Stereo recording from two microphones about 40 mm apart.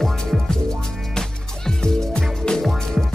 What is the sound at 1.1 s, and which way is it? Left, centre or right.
Music, centre.